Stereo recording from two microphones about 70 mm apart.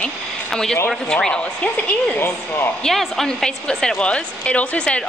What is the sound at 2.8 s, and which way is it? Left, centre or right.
A woman's voice, centre.